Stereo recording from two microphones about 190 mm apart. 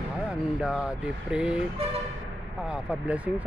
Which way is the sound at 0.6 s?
5° right (ahead or behind).